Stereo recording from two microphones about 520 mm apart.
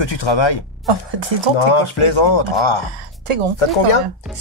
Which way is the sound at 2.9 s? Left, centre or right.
Right.